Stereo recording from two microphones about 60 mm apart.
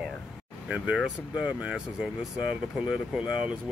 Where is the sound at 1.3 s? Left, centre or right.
Centre.